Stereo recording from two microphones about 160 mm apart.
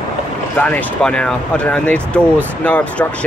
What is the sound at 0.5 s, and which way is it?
Speech, 10° left (ahead or behind).